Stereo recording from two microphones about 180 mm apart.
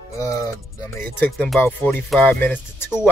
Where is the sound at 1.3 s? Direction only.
Centre (ahead or behind).